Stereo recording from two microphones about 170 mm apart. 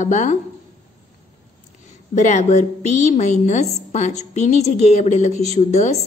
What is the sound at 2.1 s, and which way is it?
A woman's voice, 45° left (ahead or behind).